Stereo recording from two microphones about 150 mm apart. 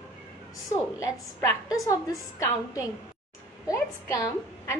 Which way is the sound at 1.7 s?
25° left (ahead or behind).